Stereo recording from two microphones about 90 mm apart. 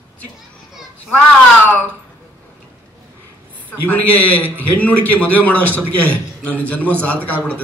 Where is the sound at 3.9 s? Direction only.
20° left (ahead or behind).